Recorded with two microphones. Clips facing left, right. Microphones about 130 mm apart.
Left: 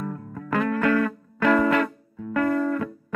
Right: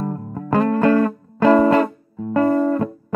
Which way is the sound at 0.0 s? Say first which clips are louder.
Right 6 dB; 35° right (ahead or behind).